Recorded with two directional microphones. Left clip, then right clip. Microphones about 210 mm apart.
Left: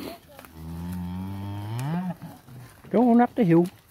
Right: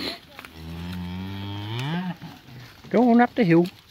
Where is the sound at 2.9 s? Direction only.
Centre (ahead or behind).